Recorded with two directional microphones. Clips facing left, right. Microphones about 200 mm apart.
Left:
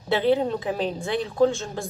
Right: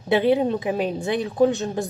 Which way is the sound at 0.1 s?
15° right (ahead or behind).